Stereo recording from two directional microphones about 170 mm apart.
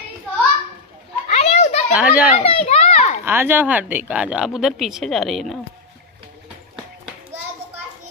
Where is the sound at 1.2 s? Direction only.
40° left (ahead or behind).